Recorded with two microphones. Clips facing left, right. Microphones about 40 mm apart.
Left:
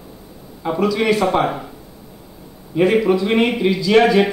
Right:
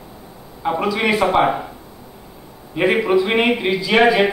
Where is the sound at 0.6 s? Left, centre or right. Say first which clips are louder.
Left 1 dB; centre.